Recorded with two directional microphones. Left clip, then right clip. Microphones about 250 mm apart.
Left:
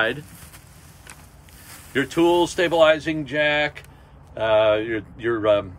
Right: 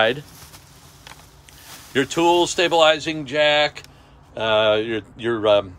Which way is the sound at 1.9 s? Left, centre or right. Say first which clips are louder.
Right 1 dB; centre.